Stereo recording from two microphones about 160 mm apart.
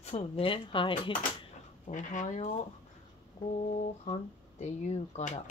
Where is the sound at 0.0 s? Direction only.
40° left (ahead or behind).